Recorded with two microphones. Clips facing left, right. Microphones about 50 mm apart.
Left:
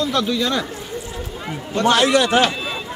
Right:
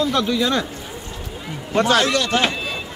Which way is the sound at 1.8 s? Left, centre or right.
Centre.